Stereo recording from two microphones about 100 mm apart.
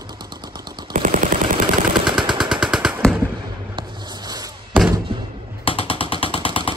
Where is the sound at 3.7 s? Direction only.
50° right (ahead or behind).